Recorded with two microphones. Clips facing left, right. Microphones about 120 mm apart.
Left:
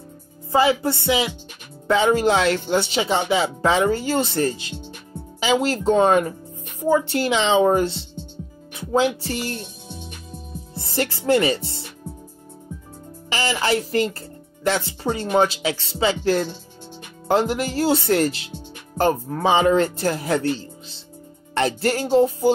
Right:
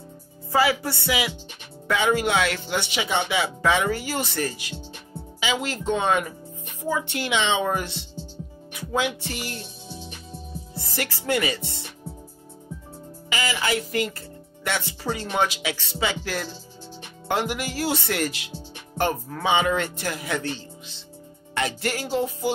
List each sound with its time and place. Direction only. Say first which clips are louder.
0.5 s speech: left 4 dB; 25° left (ahead or behind)
5.4 s speech: left 7 dB; 40° left (ahead or behind)
10.7 s speech: left 7 dB; 30° left (ahead or behind)
13.3 s a woman's voice: left 4 dB; 35° left (ahead or behind)